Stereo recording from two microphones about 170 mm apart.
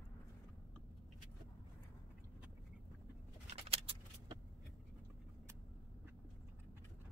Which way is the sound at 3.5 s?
35° right (ahead or behind).